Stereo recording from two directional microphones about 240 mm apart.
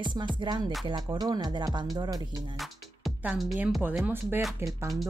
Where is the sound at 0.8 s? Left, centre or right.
Centre.